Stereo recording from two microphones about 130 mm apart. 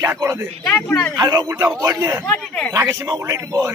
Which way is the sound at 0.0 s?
20° right (ahead or behind).